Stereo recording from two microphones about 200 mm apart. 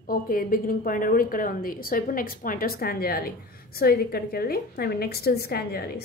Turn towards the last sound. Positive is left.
turn(degrees=50)  # may be behind; listen again after turning